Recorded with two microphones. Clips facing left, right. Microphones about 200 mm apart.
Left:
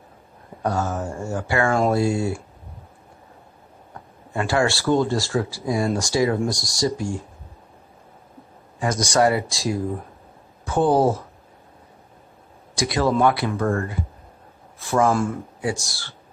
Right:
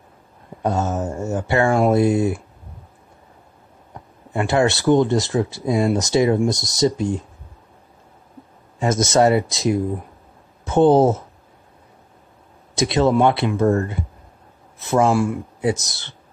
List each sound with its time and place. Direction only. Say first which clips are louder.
0.6 s speech: right 3 dB; 20° right (ahead or behind)
4.3 s speech: right 3 dB; 20° right (ahead or behind)
8.7 s speech: right 4 dB; 25° right (ahead or behind)
12.7 s a man's voice: right 4 dB; 25° right (ahead or behind)
15.0 s speech: right 3 dB; 10° right (ahead or behind)
15.6 s speech: right 5 dB; 20° right (ahead or behind)